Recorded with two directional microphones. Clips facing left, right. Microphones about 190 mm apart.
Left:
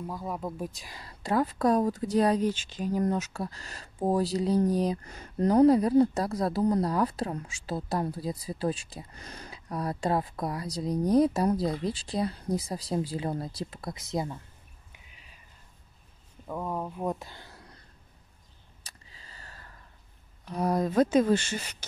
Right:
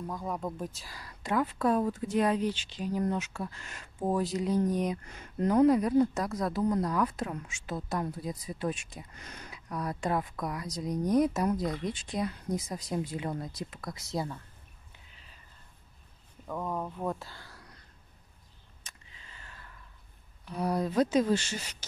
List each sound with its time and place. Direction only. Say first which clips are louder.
0.0 s speech: left 1 dB; 5° left (ahead or behind); by 1.1 s 20° left (ahead or behind)
1.2 s speech: left 3 dB; 35° left (ahead or behind); by 14.4 s 20° left (ahead or behind)
14.9 s a sound: left 2 dB; 15° left (ahead or behind)
16.4 s speech: left 1 dB; 10° left (ahead or behind)
18.8 s a sound: left 2 dB; 35° left (ahead or behind)
20.4 s speech: left 3 dB; 45° left (ahead or behind)